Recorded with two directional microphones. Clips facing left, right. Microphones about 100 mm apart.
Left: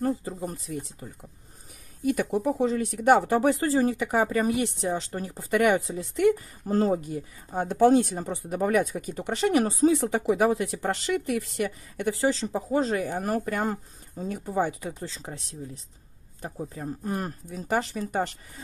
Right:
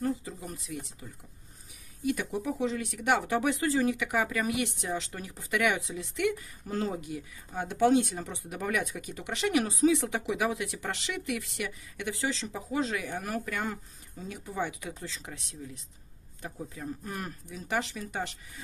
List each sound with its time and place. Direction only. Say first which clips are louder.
0.0 s speech: left 5 dB; 40° left (ahead or behind)
2.0 s speech: left 6 dB; 50° left (ahead or behind)